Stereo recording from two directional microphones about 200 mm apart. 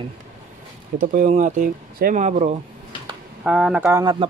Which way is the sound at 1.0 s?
40° right (ahead or behind).